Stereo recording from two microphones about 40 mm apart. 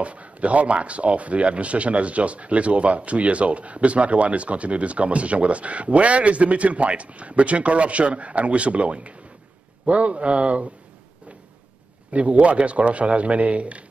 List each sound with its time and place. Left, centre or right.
0.0 s speech: right
12.1 s speech: right